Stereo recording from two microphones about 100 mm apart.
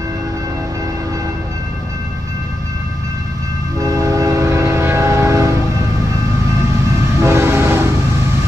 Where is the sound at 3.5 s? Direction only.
35° right (ahead or behind).